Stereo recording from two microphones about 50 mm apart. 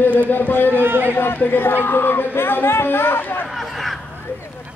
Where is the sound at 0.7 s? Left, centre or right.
Right.